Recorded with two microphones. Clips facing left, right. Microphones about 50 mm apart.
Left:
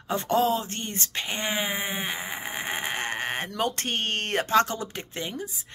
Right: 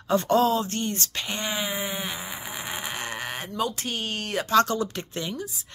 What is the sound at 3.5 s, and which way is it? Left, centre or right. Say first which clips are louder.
Speech: right 2 dB; left.